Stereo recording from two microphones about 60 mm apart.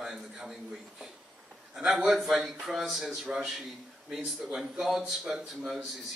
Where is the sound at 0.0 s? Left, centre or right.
Centre.